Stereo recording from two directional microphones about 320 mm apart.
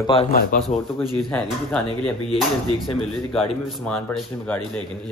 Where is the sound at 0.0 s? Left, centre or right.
Centre.